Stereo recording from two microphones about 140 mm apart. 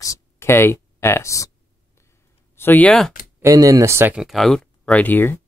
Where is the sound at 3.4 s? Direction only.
25° right (ahead or behind).